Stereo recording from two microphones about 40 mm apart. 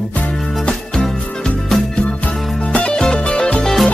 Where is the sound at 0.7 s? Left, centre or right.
Left.